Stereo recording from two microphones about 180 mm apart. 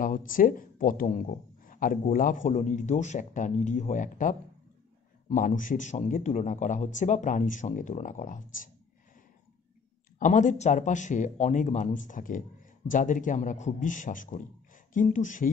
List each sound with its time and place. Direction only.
0.0 s speech: 50° left (ahead or behind)
10.1 s speech: 45° left (ahead or behind)